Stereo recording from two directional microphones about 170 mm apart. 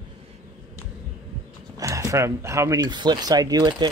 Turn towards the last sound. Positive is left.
turn(degrees=-25)  # may be behind; listen again after turning